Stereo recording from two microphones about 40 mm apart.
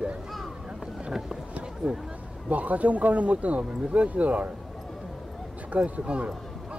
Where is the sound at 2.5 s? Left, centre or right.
Right.